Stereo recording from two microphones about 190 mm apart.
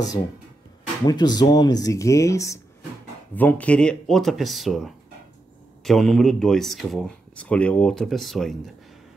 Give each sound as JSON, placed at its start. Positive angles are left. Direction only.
{"t": 1.0, "sound": "speech", "side_deg": 20}